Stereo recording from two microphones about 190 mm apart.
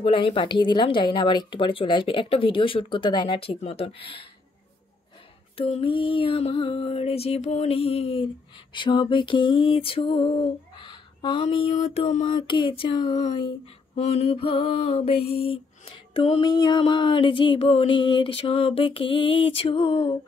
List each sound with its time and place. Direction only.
0.0 s speech: 30° left (ahead or behind)
5.6 s music: 30° left (ahead or behind)
8.7 s speech: 25° left (ahead or behind)
12.3 s speech: 25° left (ahead or behind)
13.9 s speech: 35° left (ahead or behind)